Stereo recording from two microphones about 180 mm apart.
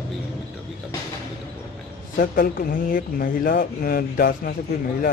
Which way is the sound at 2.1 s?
50° left (ahead or behind).